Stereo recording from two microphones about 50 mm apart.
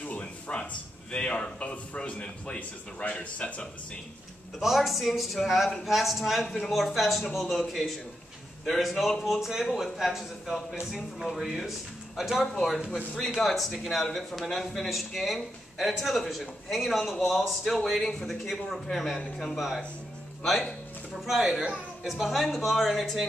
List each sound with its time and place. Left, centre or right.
0.0 s a sound: left
1.1 s a man's voice: left
4.6 s speech: centre
12.9 s speech: centre
21.4 s speech: centre